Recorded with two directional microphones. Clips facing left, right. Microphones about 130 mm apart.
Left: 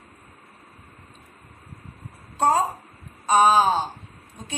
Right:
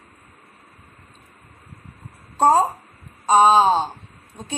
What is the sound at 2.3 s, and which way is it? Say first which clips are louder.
A woman's voice: right 4 dB; 35° right (ahead or behind).